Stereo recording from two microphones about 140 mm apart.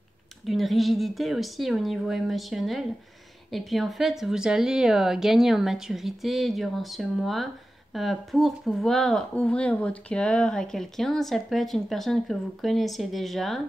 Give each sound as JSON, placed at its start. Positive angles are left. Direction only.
{"t": 0.5, "sound": "speech", "side_deg": 0}